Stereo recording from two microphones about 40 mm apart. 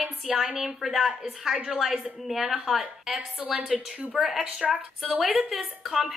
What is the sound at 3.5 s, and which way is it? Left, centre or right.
Speech, right.